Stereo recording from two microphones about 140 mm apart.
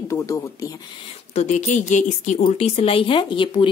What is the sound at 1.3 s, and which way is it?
Speech, 55° left (ahead or behind).